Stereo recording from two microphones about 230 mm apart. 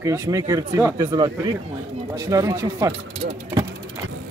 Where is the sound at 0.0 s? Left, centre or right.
Centre.